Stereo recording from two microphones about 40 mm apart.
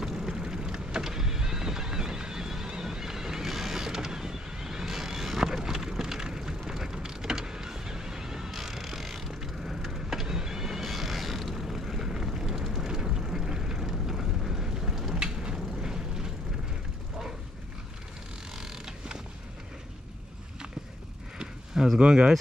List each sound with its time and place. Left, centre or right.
0.0 s vehicle: centre
15.1 s a sound: centre
18.6 s vehicle: centre
21.9 s speech: right